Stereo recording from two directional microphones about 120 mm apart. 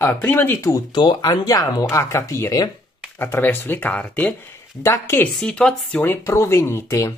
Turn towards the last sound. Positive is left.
turn(degrees=25)  # may be behind; listen again after turning